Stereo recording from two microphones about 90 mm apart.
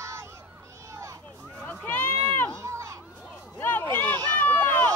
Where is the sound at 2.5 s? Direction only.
35° right (ahead or behind).